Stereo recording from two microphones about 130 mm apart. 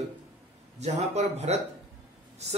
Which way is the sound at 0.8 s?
55° right (ahead or behind).